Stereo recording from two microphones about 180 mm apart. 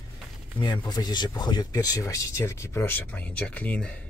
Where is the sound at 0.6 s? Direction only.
25° left (ahead or behind); by 3.9 s 5° left (ahead or behind).